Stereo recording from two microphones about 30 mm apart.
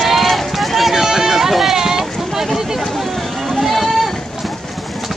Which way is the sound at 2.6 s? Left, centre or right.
Centre.